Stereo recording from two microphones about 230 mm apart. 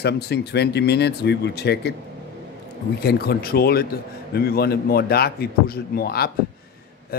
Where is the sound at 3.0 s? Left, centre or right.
Left.